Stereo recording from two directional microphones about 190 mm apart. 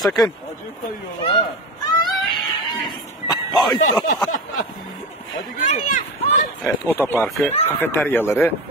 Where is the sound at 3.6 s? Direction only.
25° left (ahead or behind).